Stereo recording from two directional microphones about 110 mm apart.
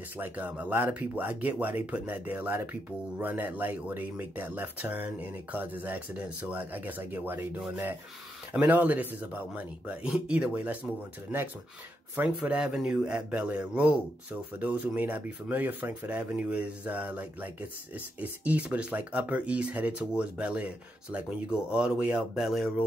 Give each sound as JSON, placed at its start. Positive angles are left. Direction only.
{"t": 0.2, "sound": "speech", "side_deg": -15}
{"t": 12.2, "sound": "speech", "side_deg": -10}